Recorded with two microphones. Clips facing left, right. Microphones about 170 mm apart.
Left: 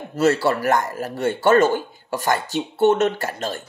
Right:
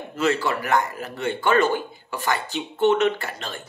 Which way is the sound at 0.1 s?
40° left (ahead or behind).